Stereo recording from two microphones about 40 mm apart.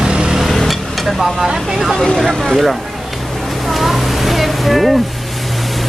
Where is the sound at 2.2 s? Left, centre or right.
Centre.